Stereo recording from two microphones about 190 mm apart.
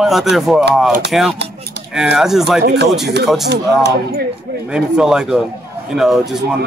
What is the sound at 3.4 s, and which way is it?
Speech, 60° right (ahead or behind).